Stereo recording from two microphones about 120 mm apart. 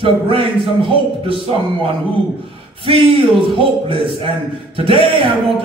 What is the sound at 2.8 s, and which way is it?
Speech, 50° right (ahead or behind).